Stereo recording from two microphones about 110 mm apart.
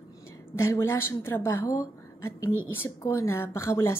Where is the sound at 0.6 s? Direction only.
25° left (ahead or behind).